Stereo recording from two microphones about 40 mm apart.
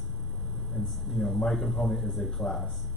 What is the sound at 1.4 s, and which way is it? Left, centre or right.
Speech, centre.